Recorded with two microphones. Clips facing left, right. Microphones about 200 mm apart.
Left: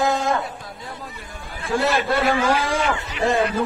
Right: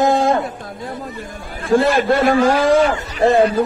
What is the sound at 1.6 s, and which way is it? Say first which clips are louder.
A man's voice: right 7 dB; 45° right (ahead or behind).